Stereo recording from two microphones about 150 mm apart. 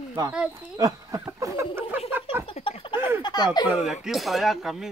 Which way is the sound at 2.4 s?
40° left (ahead or behind).